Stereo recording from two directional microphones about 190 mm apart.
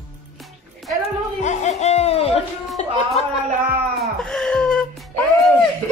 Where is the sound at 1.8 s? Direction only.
35° left (ahead or behind).